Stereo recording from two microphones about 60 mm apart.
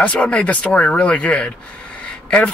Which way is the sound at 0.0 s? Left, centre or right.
Left.